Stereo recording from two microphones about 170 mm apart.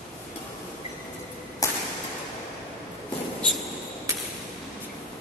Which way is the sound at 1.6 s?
20° left (ahead or behind).